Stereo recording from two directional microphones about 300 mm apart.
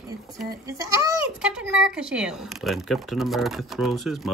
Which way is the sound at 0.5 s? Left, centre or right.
Centre.